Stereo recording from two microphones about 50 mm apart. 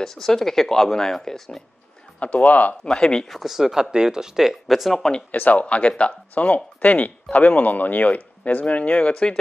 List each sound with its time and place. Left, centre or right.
0.0 s speech: centre
2.1 s speech: left
2.8 s speech: centre
3.3 s speech: centre
5.3 s speech: left